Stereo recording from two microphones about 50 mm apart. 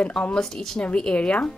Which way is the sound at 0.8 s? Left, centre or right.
Centre.